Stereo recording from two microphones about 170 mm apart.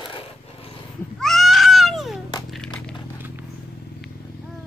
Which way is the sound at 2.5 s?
5° left (ahead or behind).